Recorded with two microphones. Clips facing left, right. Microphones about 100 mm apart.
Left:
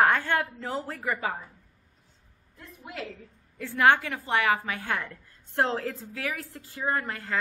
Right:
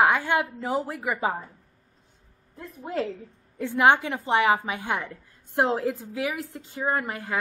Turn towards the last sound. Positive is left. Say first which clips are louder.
# right 2 dB
turn(degrees=-15)  # may be behind; listen again after turning